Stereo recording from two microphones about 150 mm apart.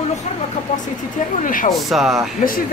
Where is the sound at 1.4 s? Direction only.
65° left (ahead or behind).